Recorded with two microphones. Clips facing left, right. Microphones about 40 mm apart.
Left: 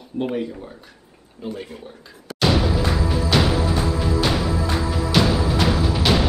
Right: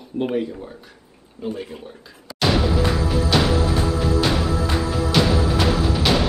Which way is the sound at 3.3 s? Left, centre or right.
Centre.